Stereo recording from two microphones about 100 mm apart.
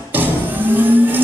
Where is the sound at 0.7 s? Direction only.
20° right (ahead or behind).